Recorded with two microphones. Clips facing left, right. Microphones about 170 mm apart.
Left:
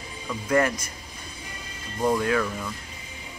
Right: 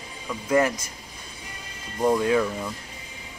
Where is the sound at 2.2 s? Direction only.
20° right (ahead or behind).